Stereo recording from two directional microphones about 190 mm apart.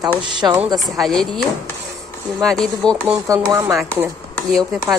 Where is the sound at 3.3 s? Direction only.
15° right (ahead or behind).